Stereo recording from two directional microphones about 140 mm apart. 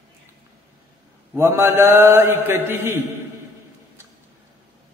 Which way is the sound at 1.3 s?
15° right (ahead or behind).